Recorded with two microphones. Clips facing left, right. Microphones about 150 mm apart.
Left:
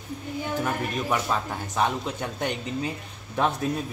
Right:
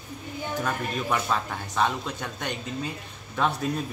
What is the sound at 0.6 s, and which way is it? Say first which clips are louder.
Speech: right 1 dB; 10° left (ahead or behind).